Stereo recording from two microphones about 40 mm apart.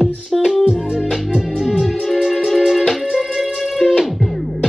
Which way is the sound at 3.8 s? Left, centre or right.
Left.